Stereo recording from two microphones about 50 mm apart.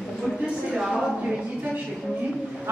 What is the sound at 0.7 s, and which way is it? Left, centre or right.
Speech, centre.